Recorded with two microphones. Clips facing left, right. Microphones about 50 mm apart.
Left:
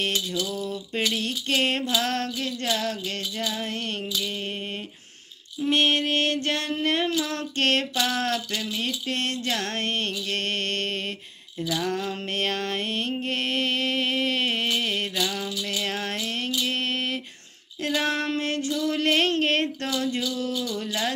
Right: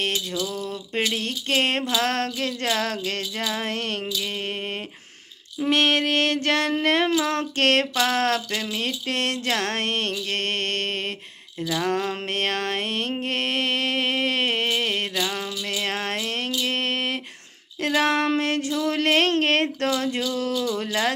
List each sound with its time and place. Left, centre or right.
0.4 s music: right
2.0 s child singing: right
5.6 s child singing: right
11.7 s music: right
17.8 s child singing: right
18.2 s music: right
18.7 s child singing: right
20.2 s music: right